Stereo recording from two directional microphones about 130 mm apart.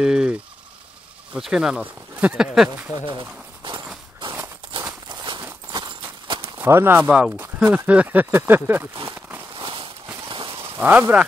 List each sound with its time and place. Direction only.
0.0 s speech: 5° right (ahead or behind)
3.6 s walk: 40° right (ahead or behind)
5.1 s horse: 35° right (ahead or behind)
6.2 s clip-clop: 40° right (ahead or behind)
6.6 s speech: 20° right (ahead or behind)
9.6 s walk: 40° right (ahead or behind)
10.2 s a sound: 40° right (ahead or behind)
10.8 s speech: 15° right (ahead or behind)